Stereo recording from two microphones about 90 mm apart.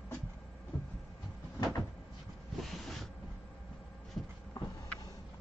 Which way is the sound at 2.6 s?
Centre (ahead or behind).